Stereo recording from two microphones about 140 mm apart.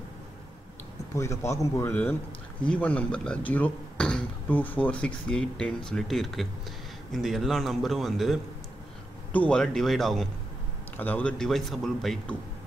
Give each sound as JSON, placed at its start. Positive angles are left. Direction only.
{"t": 1.1, "sound": "a man's voice", "side_deg": 20}